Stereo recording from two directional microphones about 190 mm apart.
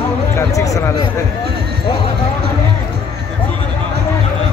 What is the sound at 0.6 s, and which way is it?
Speech, 15° left (ahead or behind).